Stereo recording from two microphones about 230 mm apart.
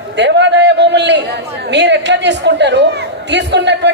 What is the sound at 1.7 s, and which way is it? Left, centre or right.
A woman's voice, right.